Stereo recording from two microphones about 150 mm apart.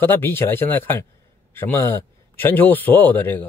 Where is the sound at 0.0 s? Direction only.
15° left (ahead or behind).